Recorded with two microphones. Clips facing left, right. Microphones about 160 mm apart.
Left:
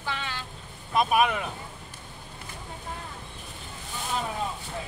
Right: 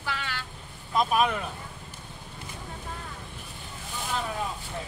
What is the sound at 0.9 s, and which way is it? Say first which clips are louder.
Speech: left 1 dB; 10° left (ahead or behind).